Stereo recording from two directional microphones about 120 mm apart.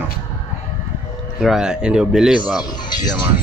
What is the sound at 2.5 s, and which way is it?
Speech, 35° left (ahead or behind).